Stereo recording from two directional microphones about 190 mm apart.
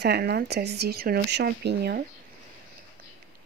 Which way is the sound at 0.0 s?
60° right (ahead or behind).